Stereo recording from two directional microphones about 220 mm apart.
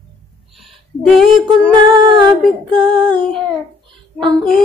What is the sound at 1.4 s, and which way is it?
Female singing, 20° right (ahead or behind).